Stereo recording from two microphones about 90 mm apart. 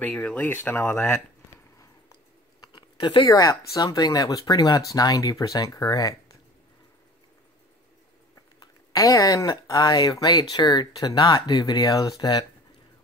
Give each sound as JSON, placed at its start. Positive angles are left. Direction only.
{"t": 0.0, "sound": "speech", "side_deg": 15}
{"t": 2.6, "sound": "a sound", "side_deg": 55}
{"t": 3.3, "sound": "speech", "side_deg": 40}
{"t": 8.5, "sound": "speech", "side_deg": 40}